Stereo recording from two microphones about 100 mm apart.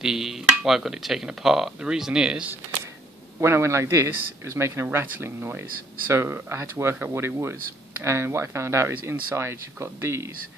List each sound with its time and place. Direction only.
0.0 s speech: 5° right (ahead or behind)
3.3 s speech: 25° right (ahead or behind)